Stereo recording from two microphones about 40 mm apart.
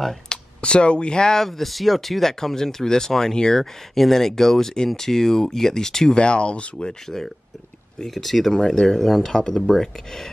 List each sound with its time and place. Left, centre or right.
0.6 s speech: left
1.6 s speech: centre
6.1 s speech: left
7.1 s speech: centre